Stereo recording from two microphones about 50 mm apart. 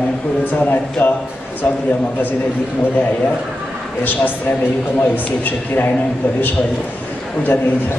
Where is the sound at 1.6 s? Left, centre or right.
Left.